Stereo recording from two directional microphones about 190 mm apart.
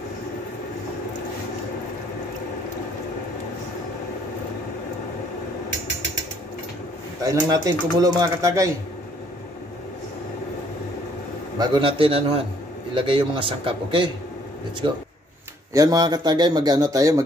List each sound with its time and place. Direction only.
7.2 s speech: 20° right (ahead or behind)
11.5 s speech: 25° right (ahead or behind)
15.7 s speech: 20° right (ahead or behind)